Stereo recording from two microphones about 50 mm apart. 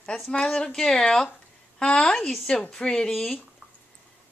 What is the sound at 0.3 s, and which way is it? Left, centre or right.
A woman's voice, centre.